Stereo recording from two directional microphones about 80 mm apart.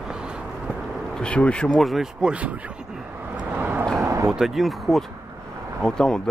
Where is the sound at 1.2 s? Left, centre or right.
Centre.